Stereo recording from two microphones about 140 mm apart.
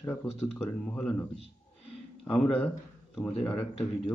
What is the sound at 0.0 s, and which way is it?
Speech, 15° left (ahead or behind).